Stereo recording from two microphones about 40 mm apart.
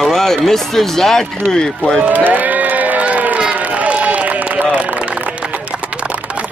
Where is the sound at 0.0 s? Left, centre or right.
Centre.